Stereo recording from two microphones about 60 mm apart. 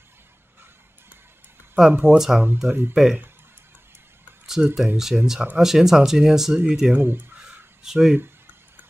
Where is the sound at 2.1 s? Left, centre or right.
Centre.